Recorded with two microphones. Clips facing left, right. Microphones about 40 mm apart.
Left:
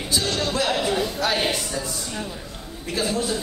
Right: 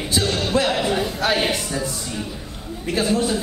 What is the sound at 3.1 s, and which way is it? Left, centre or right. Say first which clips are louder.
Speech: right 4 dB; centre.